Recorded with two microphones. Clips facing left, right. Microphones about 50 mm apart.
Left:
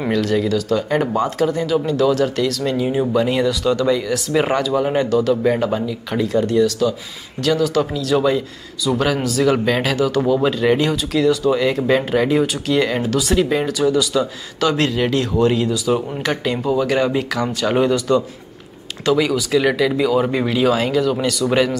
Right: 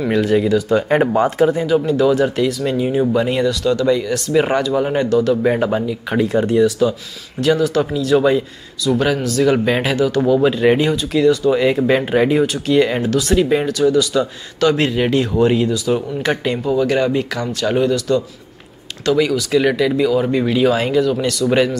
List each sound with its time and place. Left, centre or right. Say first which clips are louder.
0.1 s speech: right 3 dB; centre
0.8 s speech: right 4 dB; right; by 5.4 s centre
5.4 s speech: right 1 dB; centre
7.4 s speech: right 2 dB; centre
8.9 s speech: right 2 dB; centre
9.7 s speech: right 1 dB; centre
9.9 s speech: right 2 dB; centre
10.5 s speech: right 2 dB; centre
16.2 s speech: right 2 dB; centre
16.6 s speech: right 1 dB; centre